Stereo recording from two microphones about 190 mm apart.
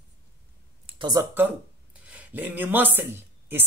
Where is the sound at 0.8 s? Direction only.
25° right (ahead or behind).